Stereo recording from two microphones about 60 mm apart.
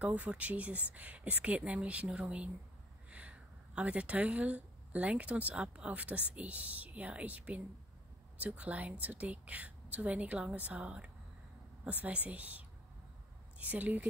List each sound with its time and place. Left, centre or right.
0.0 s speech: right